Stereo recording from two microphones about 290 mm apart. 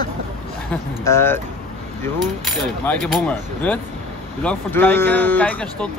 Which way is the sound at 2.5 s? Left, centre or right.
Centre.